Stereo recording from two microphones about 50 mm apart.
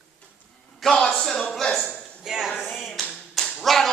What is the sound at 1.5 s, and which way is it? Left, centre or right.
Speech, centre.